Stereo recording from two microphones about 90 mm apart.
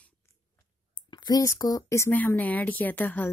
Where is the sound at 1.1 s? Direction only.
50° left (ahead or behind).